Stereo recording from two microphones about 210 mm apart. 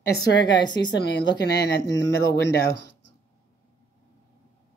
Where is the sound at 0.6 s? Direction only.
20° left (ahead or behind).